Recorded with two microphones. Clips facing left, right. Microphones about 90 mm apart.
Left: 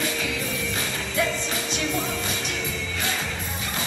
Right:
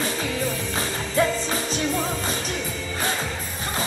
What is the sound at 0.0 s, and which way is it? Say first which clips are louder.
Music: right 2 dB; 35° right (ahead or behind).